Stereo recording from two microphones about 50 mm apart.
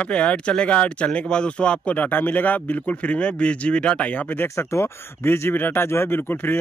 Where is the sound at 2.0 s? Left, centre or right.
Left.